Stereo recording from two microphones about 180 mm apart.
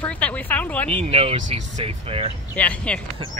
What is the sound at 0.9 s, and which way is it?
Speech, 35° right (ahead or behind).